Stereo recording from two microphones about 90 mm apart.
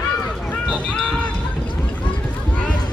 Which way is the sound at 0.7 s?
10° left (ahead or behind).